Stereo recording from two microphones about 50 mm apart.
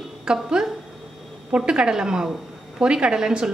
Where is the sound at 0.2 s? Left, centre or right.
Centre.